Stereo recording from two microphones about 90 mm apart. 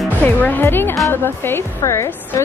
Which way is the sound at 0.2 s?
20° left (ahead or behind).